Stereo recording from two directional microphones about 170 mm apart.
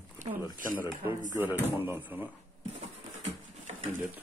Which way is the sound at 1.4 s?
10° right (ahead or behind).